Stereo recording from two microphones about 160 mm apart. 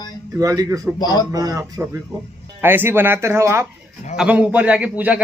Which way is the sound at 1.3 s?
25° right (ahead or behind).